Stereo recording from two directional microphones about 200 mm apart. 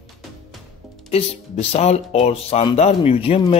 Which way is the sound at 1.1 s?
30° left (ahead or behind).